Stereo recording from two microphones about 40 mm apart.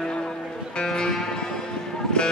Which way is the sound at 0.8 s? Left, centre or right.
Centre.